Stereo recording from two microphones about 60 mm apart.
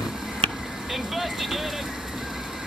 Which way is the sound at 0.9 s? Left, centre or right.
Centre.